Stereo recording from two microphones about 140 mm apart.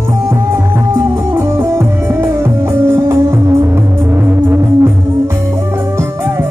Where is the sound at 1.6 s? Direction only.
20° right (ahead or behind).